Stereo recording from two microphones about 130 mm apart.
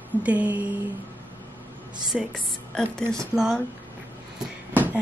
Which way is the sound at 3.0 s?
25° right (ahead or behind).